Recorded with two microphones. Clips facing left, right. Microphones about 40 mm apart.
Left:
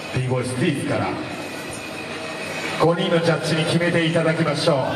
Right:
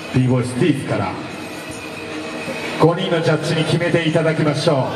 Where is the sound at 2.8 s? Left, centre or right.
Centre.